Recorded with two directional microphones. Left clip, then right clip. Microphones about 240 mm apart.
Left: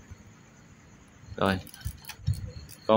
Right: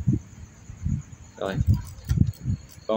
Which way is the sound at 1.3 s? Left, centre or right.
Centre.